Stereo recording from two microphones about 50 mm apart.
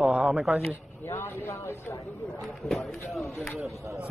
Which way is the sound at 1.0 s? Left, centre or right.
Left.